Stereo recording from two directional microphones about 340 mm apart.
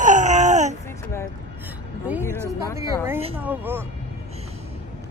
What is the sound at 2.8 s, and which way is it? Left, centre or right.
A woman's voice, centre.